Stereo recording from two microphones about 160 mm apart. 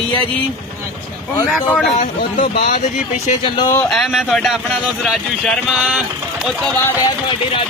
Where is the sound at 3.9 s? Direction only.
Centre (ahead or behind).